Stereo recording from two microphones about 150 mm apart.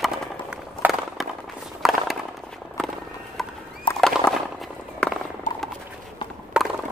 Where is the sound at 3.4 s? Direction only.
Centre (ahead or behind).